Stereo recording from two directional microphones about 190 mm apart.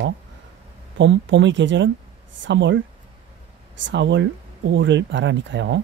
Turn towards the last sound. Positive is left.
turn(degrees=-70)  # may be behind; listen again after turning